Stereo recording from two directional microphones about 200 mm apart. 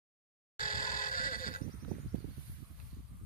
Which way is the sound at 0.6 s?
45° left (ahead or behind).